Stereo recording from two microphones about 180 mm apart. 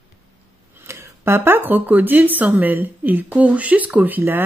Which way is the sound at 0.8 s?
15° right (ahead or behind).